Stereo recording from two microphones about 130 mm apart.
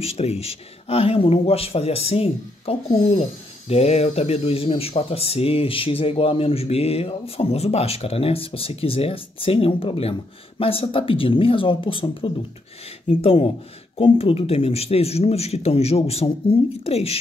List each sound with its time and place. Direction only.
0.0 s speech: 50° left (ahead or behind)